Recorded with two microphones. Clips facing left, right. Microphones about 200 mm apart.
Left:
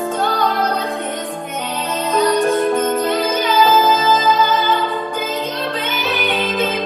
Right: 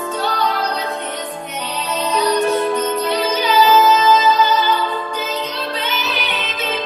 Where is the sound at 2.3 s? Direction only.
50° left (ahead or behind).